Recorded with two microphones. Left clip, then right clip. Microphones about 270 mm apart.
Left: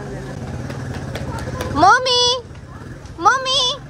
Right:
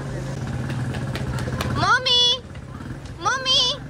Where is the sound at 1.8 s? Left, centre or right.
Centre.